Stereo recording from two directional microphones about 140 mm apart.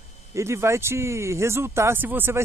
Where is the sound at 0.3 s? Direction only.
20° right (ahead or behind).